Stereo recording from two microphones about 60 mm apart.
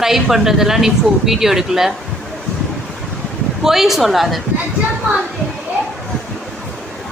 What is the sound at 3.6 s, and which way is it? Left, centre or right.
Speech, centre.